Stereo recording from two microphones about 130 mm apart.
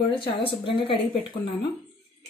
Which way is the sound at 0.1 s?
40° left (ahead or behind).